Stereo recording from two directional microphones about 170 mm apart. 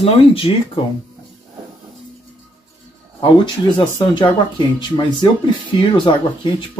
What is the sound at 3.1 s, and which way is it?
Speech, 25° left (ahead or behind).